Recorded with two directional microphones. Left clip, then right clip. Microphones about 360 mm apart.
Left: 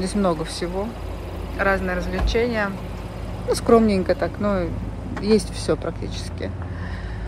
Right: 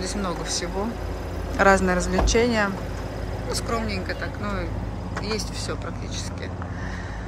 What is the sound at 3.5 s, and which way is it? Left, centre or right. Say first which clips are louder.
Speech: left 11 dB; centre.